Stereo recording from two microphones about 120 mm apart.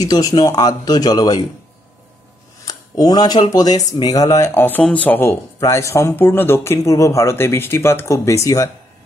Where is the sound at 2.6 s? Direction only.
30° left (ahead or behind).